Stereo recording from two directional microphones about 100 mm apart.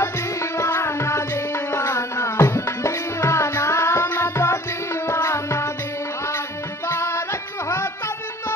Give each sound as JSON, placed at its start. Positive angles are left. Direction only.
{"t": 0.0, "sound": "music", "side_deg": 25}
{"t": 6.9, "sound": "music", "side_deg": 25}